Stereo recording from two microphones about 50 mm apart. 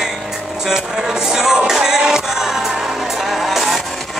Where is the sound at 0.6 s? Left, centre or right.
Centre.